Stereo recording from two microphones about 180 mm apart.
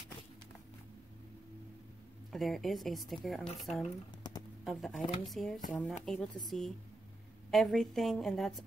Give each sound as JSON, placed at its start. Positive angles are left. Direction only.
{"t": 2.3, "sound": "a woman's voice", "side_deg": 0}
{"t": 4.2, "sound": "typing", "side_deg": 25}
{"t": 4.6, "sound": "a woman's voice", "side_deg": 0}